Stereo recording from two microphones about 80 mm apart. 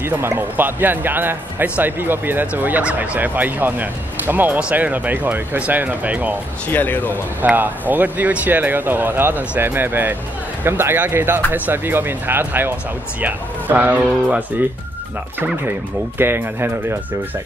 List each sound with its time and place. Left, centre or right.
0.4 s speech: right
6.7 s speech: left
7.4 s speech: right
16.2 s speech: right